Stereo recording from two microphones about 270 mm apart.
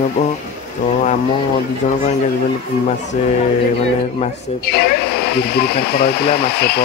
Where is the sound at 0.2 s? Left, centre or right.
Left.